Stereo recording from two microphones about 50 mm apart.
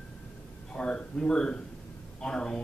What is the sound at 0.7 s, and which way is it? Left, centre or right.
A man's voice, centre.